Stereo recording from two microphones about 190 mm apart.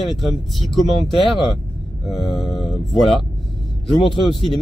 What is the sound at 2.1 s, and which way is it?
Speech, centre (ahead or behind).